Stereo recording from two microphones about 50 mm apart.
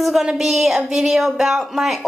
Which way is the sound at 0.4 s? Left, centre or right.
Centre.